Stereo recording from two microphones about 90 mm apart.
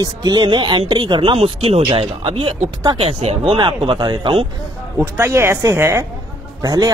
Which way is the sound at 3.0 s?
90° right.